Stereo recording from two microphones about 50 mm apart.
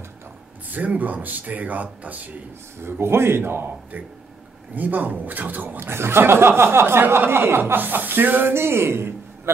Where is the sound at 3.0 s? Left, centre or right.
Right.